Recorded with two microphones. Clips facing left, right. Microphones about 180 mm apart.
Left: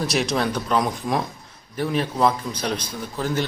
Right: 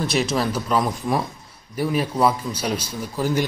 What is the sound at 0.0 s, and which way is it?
Speech, centre (ahead or behind).